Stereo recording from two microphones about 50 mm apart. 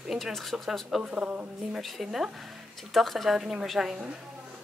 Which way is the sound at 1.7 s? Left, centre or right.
Centre.